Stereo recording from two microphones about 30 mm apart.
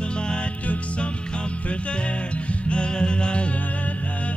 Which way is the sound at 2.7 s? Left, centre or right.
Left.